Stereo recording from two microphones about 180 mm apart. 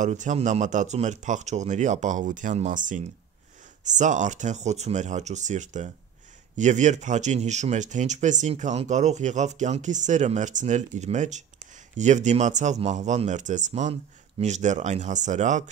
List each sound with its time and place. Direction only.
0.0 s speech: 45° right (ahead or behind)